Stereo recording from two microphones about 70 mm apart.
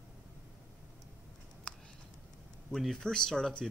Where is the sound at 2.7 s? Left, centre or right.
Centre.